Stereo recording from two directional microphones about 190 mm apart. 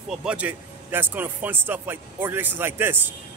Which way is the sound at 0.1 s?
5° right (ahead or behind).